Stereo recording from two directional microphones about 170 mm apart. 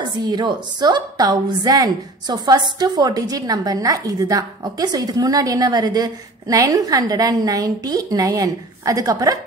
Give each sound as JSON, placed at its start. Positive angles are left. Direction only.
{"t": 0.2, "sound": "a woman's voice", "side_deg": -25}